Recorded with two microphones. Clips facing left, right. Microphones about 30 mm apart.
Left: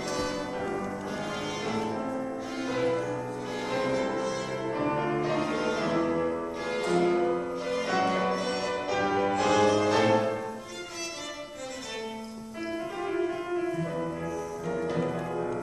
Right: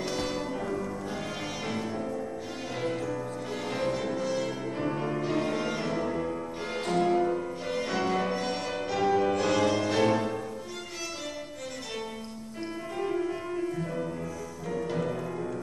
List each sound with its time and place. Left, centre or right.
0.0 s change ringing: centre
0.4 s music: centre
1.7 s music: centre
2.0 s music: centre
2.7 s music: centre
4.6 s music: centre
13.0 s music: centre